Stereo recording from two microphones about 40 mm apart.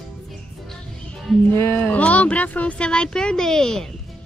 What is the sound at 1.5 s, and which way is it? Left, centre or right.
Speech, left.